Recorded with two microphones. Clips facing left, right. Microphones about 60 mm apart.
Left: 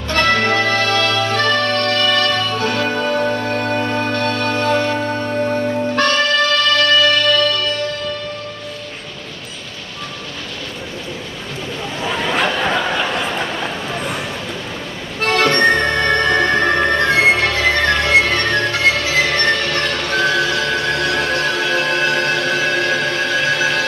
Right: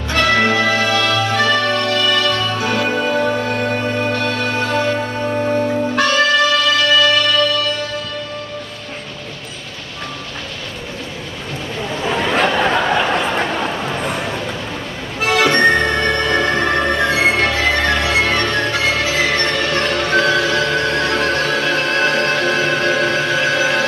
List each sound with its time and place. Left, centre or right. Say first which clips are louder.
0.1 s music: right 1 dB; centre
12.0 s a sound: right 2 dB; centre
15.1 s music: right 1 dB; centre
16.4 s music: left 1 dB; centre; by 23.9 s right